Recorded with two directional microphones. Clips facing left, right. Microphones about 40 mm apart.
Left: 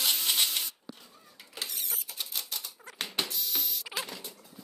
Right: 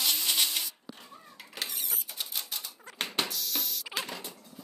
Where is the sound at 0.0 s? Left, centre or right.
Centre.